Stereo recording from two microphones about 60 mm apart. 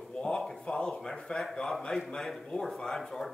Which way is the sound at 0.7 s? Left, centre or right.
Centre.